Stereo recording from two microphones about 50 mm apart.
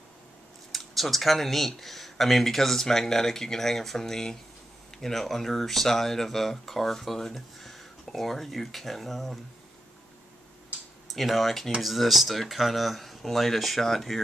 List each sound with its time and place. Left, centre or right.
0.7 s speech: centre
11.1 s speech: centre